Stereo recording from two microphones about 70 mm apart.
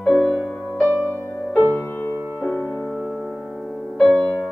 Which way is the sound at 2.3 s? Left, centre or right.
Centre.